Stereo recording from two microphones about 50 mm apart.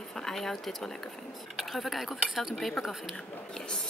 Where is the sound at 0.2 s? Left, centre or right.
Centre.